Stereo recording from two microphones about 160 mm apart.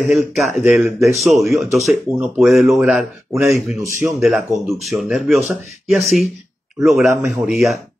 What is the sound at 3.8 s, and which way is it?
Speech, 15° right (ahead or behind).